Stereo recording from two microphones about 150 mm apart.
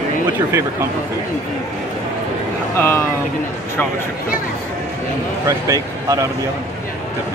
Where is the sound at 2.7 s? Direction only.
15° left (ahead or behind).